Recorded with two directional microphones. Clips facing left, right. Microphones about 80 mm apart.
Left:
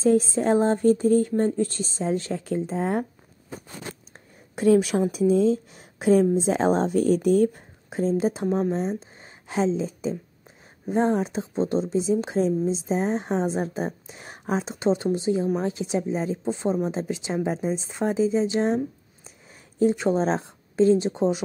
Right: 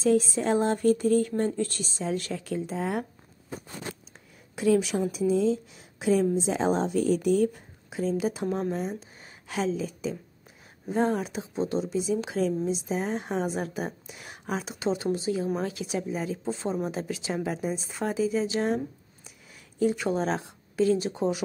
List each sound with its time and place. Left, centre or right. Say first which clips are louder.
0.0 s a woman's voice: left 3 dB; left
4.1 s a sound: left 4 dB; left
5.1 s a woman's voice: left 4 dB; left
19.8 s speech: left 4 dB; left